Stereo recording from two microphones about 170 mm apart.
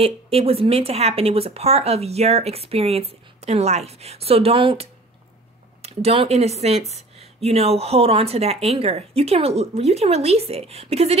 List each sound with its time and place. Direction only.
0.0 s speech: 35° right (ahead or behind)